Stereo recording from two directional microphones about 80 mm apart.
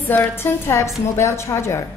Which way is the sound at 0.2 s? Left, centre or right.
Left.